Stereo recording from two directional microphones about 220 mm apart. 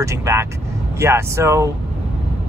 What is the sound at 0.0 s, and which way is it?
Speech, 15° right (ahead or behind).